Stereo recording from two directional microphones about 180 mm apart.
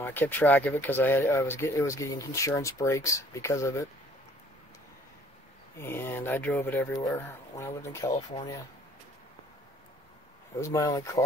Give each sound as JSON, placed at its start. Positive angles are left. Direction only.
{"t": 0.0, "sound": "speech", "side_deg": 10}
{"t": 5.8, "sound": "speech", "side_deg": 15}
{"t": 10.6, "sound": "speech", "side_deg": 15}